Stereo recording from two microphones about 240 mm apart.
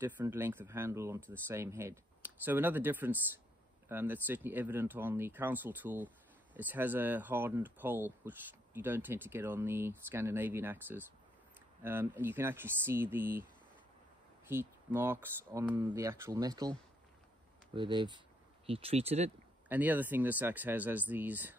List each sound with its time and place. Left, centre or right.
0.0 s speech: centre
14.5 s speech: centre
17.7 s speech: centre
19.7 s speech: centre